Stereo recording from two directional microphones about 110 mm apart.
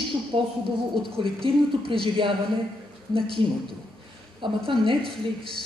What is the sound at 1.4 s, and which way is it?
Speech, 55° right (ahead or behind).